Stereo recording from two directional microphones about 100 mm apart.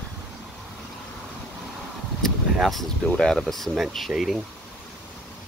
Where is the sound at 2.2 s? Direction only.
Centre (ahead or behind).